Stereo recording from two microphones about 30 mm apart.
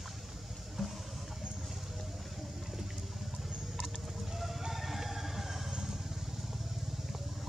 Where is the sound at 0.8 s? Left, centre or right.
Centre.